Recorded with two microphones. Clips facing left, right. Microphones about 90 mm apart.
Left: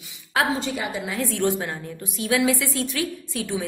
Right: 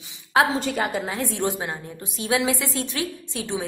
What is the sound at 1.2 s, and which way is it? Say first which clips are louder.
A woman's voice: left 2 dB; 20° right (ahead or behind).